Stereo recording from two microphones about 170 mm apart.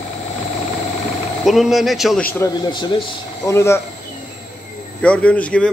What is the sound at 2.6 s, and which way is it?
Speech, 25° left (ahead or behind).